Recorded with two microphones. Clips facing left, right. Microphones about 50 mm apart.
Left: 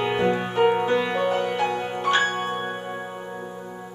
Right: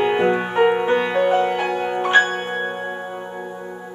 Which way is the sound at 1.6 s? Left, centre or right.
Centre.